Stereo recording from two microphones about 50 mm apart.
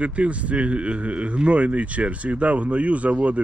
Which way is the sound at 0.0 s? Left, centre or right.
Right.